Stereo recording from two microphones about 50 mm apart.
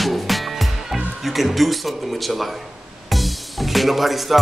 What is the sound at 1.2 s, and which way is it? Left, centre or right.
Speech, centre.